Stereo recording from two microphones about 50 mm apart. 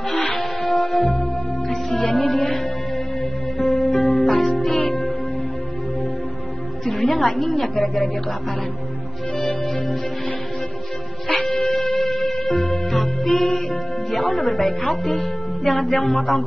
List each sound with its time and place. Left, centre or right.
0.4 s music: centre
6.9 s a woman's voice: centre
9.4 s music: centre
11.4 s music: centre
14.9 s a woman's voice: centre